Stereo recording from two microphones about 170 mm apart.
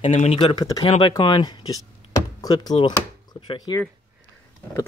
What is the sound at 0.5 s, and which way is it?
Speech, 20° left (ahead or behind).